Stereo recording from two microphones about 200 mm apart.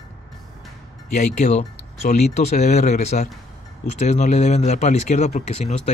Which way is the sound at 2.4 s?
35° left (ahead or behind).